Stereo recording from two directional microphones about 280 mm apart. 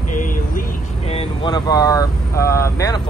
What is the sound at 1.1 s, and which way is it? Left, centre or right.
Speech, centre.